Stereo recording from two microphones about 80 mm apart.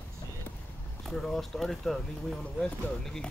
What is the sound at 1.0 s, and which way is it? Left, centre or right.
Speech, centre.